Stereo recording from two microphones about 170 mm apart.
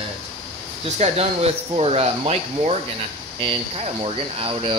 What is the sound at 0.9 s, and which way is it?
Speech, 40° right (ahead or behind).